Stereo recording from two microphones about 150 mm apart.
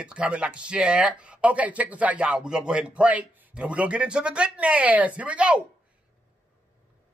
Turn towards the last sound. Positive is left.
turn(degrees=-5)  # may be behind; listen again after turning